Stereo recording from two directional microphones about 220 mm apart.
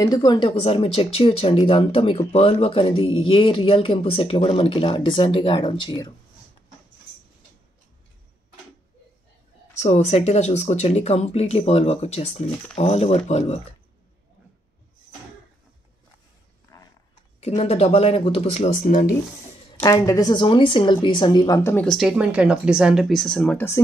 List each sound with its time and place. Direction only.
0.0 s speech: 15° left (ahead or behind)
9.8 s speech: 30° left (ahead or behind)
17.4 s speech: 30° left (ahead or behind)
19.8 s a woman's voice: 15° left (ahead or behind)